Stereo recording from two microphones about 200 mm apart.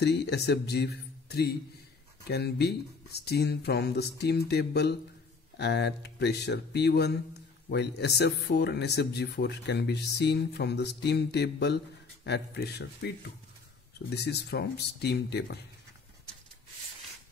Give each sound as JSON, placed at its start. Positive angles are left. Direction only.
{"t": 0.0, "sound": "speech", "side_deg": 55}
{"t": 2.2, "sound": "speech", "side_deg": 55}
{"t": 14.1, "sound": "speech", "side_deg": 55}